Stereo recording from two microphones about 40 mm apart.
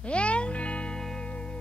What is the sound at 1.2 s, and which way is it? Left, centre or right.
Music, left.